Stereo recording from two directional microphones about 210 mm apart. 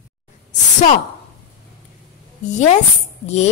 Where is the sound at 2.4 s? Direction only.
35° left (ahead or behind).